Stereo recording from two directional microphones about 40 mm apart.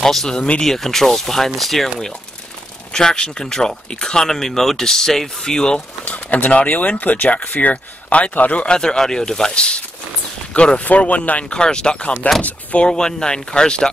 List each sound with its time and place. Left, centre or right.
0.0 s speech: centre
0.3 s speech: left
0.7 s speech: centre
2.9 s speech: centre
6.0 s speech: left
8.6 s speech: centre
10.8 s speech: left
11.5 s speech: left